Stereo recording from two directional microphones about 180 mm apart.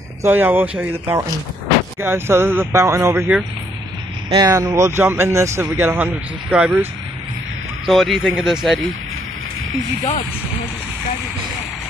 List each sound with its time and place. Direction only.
0.2 s a man's voice: 10° right (ahead or behind)